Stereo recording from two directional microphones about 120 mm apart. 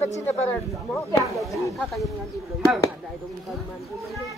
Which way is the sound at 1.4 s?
Centre (ahead or behind).